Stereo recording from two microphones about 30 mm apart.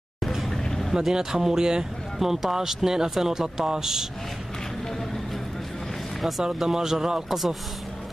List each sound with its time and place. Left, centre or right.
0.5 s vehicle: centre
0.9 s speech: right
2.1 s speech: centre
6.6 s speech: centre
7.2 s speech: centre